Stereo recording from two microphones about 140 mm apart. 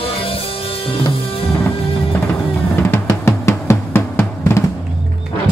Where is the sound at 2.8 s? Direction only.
20° left (ahead or behind).